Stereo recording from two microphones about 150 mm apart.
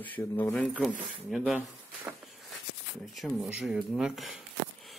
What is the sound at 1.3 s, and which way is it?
Speech, 5° right (ahead or behind).